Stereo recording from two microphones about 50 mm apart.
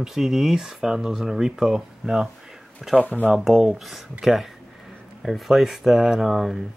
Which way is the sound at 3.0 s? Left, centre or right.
Left.